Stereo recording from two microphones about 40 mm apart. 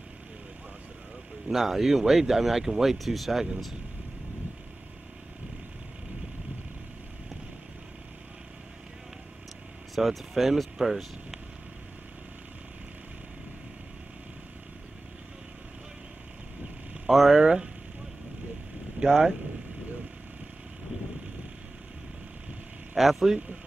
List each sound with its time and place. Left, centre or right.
1.5 s speech: centre
9.9 s speech: centre
17.1 s speech: centre
17.4 s speech: right
18.9 s speech: right
22.9 s speech: centre